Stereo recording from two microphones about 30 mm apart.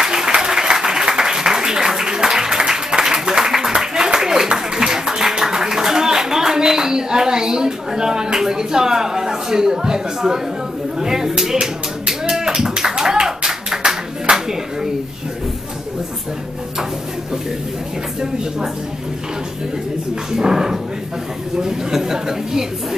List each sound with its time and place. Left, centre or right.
0.0 s applause: centre
2.0 s a sound: right
11.0 s speech: centre
12.3 s a sound: right
12.9 s clapping: right
20.3 s speech: centre